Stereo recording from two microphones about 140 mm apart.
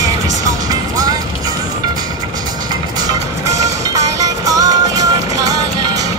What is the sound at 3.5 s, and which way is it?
Music, 25° right (ahead or behind).